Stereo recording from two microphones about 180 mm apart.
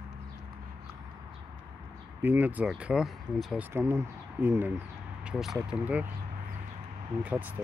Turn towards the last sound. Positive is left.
turn(degrees=-10)  # may be behind; listen again after turning